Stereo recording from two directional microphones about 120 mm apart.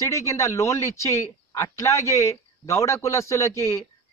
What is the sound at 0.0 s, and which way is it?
A man's voice, 25° left (ahead or behind).